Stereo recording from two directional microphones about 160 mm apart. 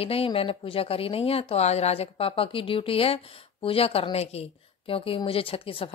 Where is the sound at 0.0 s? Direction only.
35° left (ahead or behind).